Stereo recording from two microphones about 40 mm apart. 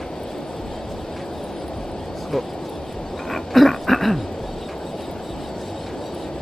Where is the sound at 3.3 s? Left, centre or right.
Centre.